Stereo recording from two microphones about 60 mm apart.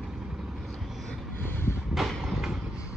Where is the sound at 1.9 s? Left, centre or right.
Centre.